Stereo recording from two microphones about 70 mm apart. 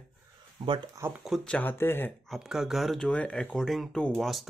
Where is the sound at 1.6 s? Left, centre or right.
Left.